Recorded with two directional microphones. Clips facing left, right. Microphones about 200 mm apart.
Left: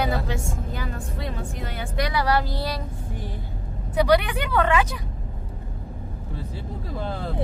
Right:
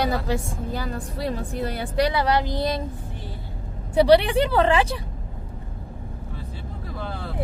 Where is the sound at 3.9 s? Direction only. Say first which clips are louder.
Right 4 dB; 30° right (ahead or behind).